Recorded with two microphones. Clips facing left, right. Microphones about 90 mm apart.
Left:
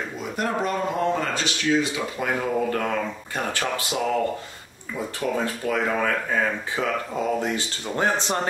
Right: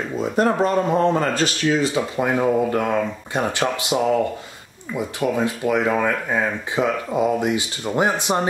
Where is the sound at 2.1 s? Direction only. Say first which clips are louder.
Right 5 dB; 25° right (ahead or behind).